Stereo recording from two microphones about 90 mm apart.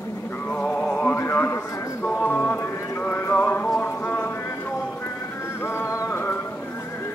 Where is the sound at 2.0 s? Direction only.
15° left (ahead or behind).